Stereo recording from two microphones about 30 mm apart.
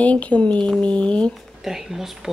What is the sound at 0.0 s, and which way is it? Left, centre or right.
Speech, left.